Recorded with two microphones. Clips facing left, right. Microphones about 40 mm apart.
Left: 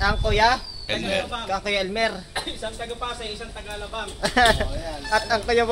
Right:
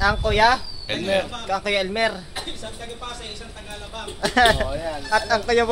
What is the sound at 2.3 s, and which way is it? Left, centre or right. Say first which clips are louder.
Speech: left 3 dB; centre.